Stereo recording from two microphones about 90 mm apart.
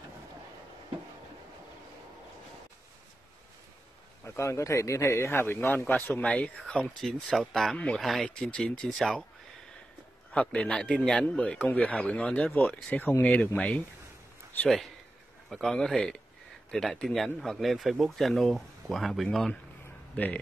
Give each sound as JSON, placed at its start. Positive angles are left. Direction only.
{"t": 4.2, "sound": "a man's voice", "side_deg": 30}
{"t": 8.5, "sound": "speech", "side_deg": 10}
{"t": 10.3, "sound": "a man's voice", "side_deg": 15}
{"t": 15.5, "sound": "a man's voice", "side_deg": 5}